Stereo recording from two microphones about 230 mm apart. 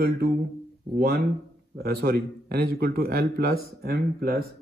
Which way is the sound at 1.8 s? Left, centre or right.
Right.